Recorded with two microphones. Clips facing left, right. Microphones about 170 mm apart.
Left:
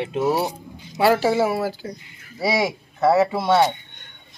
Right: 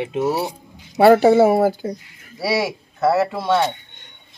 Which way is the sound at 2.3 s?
5° right (ahead or behind).